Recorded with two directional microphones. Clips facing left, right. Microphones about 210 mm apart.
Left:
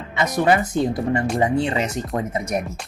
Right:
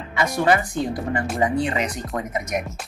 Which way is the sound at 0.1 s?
20° left (ahead or behind).